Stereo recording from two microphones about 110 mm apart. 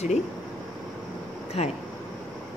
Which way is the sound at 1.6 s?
70° left (ahead or behind).